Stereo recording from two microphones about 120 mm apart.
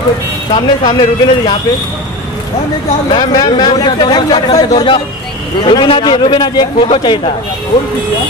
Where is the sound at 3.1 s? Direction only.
35° left (ahead or behind).